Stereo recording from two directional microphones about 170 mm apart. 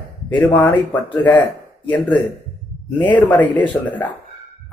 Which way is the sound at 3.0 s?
10° left (ahead or behind).